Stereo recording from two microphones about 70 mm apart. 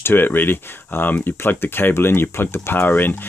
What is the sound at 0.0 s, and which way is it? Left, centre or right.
Speech, left.